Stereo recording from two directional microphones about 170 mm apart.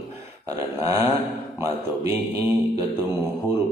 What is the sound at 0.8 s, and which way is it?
Mantra, 15° right (ahead or behind).